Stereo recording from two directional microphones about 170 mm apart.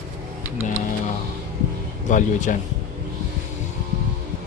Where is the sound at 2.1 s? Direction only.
50° left (ahead or behind).